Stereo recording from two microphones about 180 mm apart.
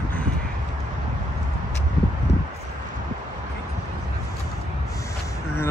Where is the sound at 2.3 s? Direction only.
80° left.